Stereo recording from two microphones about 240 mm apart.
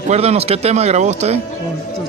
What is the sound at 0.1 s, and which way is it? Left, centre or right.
Speech, right.